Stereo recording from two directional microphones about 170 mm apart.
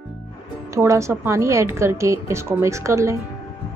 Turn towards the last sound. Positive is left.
turn(degrees=-15)  # may be behind; listen again after turning